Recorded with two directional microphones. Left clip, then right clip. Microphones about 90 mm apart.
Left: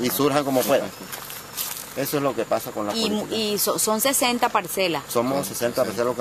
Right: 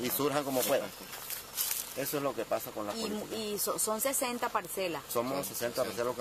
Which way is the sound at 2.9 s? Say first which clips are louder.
Left 12 dB; 25° left (ahead or behind).